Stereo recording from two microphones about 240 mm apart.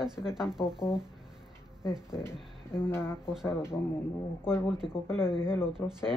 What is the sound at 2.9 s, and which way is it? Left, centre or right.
Speech, centre.